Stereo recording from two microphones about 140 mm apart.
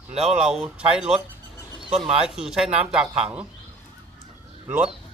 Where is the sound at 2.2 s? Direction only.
5° right (ahead or behind).